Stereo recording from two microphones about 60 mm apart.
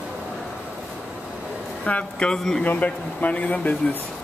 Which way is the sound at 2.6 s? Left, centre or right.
Left.